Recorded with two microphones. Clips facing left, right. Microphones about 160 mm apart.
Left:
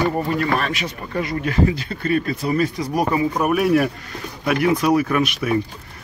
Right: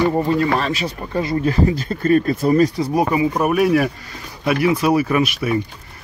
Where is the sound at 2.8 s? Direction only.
25° right (ahead or behind).